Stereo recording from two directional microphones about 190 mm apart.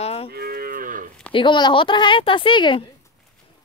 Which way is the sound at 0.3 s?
55° right (ahead or behind).